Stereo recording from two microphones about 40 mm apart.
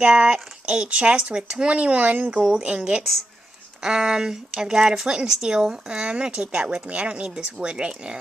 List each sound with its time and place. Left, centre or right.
0.0 s speech: right
3.8 s speech: centre
6.0 s speech: right